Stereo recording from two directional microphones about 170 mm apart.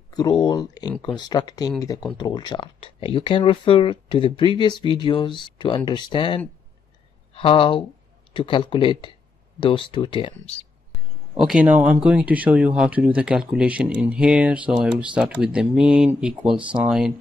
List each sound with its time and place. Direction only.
0.1 s speech: 25° left (ahead or behind)
11.3 s speech: 5° right (ahead or behind)